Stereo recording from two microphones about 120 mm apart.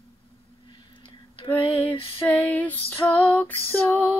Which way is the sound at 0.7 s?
45° left (ahead or behind).